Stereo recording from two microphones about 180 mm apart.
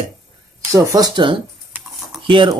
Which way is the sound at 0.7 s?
20° right (ahead or behind).